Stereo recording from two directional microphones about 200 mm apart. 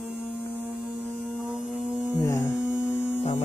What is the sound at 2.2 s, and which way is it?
Mains hum, 15° left (ahead or behind).